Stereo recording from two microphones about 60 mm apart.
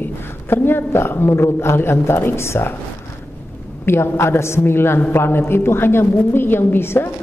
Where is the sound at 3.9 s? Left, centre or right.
Left.